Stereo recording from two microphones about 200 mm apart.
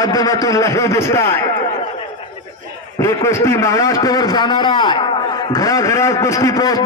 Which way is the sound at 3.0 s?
15° left (ahead or behind).